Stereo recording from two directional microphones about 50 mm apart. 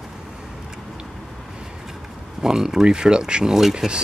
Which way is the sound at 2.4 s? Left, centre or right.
Centre.